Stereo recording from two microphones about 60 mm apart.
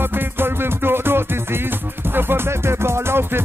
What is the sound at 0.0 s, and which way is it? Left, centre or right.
Music, right.